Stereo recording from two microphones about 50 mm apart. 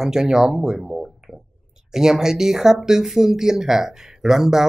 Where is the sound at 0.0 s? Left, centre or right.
Centre.